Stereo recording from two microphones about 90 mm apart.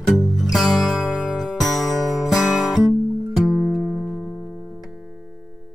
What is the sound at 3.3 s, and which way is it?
Music, 5° right (ahead or behind).